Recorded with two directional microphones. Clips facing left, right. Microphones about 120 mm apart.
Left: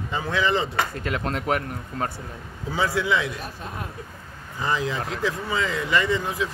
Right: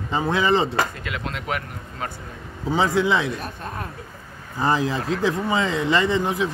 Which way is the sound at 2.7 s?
25° right (ahead or behind).